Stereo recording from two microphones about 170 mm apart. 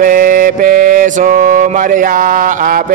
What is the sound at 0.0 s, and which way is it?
Mantra, 50° right (ahead or behind).